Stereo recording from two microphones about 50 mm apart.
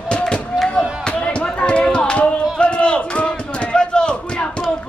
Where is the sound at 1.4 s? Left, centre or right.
Left.